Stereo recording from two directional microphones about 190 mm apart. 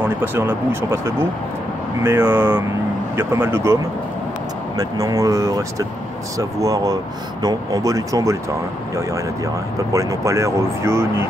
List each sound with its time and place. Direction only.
0.2 s speech: 10° right (ahead or behind)